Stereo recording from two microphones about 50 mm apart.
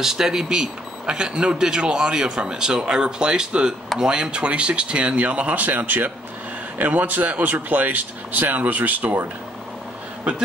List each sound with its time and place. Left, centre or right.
0.0 s speech: centre; by 9.2 s right